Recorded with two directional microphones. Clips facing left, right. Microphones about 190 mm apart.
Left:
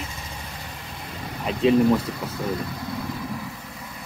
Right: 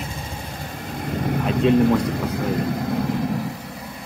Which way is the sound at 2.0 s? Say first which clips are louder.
Right 6 dB; 55° right (ahead or behind).